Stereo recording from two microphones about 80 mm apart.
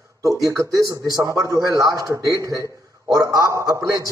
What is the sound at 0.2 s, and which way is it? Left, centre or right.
A man's voice, right.